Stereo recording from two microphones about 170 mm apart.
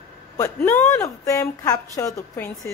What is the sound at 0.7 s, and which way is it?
A woman's voice, 15° left (ahead or behind).